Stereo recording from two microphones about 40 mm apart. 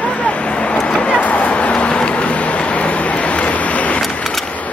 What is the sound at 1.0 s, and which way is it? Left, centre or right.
Vehicle, left.